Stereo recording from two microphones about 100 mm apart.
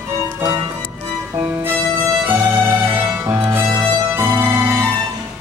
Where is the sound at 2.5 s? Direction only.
20° right (ahead or behind).